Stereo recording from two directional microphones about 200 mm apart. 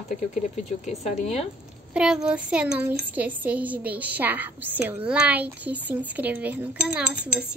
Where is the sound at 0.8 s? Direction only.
30° left (ahead or behind).